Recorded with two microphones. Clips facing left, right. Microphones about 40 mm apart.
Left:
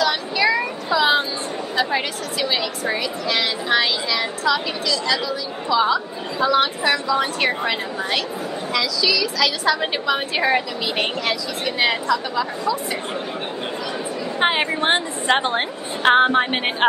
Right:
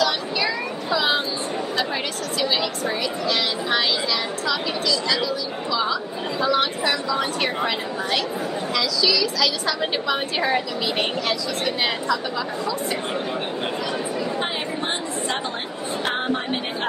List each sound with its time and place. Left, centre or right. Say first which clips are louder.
0.0 s child singing: left 3 dB; centre
1.8 s a woman's voice: left 7 dB; centre
14.4 s a woman's voice: left 7 dB; left